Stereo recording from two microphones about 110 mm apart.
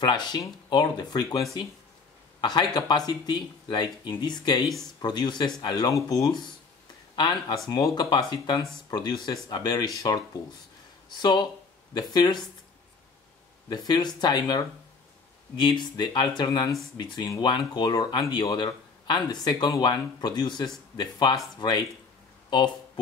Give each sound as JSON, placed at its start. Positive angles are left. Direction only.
{"t": 0.0, "sound": "speech", "side_deg": 40}
{"t": 13.7, "sound": "speech", "side_deg": 40}